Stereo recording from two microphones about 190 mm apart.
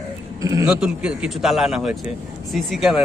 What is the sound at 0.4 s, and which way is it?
Speech, 15° right (ahead or behind).